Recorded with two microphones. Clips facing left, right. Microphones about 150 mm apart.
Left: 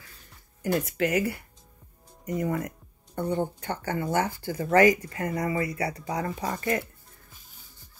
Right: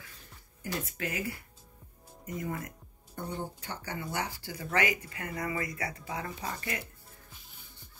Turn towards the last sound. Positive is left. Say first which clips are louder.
# left 9 dB
turn(degrees=45)  # may be behind; listen again after turning